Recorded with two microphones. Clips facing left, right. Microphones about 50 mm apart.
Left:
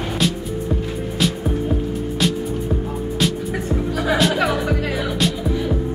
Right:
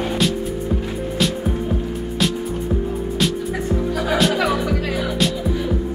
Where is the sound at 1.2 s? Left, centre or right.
Centre.